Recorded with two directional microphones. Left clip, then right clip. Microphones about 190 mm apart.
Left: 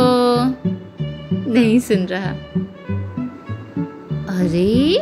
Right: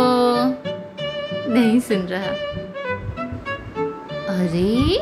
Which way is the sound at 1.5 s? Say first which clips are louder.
Left 3 dB; 20° left (ahead or behind).